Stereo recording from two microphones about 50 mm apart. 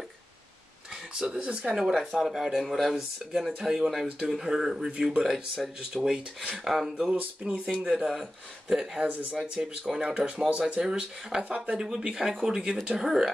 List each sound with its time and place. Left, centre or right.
1.2 s speech: centre
1.8 s speech: centre
6.5 s speech: centre
7.2 s speech: right
8.1 s speech: centre
9.0 s speech: right
9.3 s speech: centre